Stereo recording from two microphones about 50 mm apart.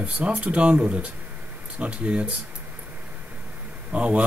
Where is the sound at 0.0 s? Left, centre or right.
Right.